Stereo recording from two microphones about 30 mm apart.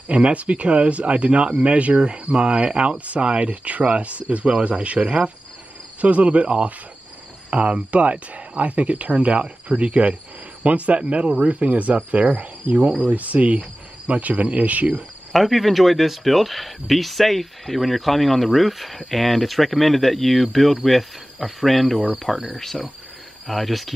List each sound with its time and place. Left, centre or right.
0.1 s speech: right
3.6 s speech: right
5.9 s speech: right
7.5 s a man's voice: right
11.0 s speech: right
11.3 s cricket: right
12.7 s speech: right
13.0 s cricket: right
15.3 s speech: centre
22.6 s cricket: centre
23.5 s speech: centre